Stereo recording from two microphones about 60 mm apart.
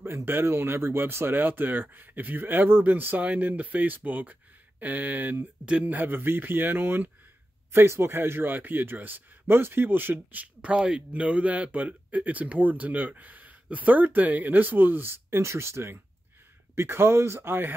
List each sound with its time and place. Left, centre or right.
0.0 s speech: right
7.7 s speech: right
10.8 s speech: centre
11.1 s speech: right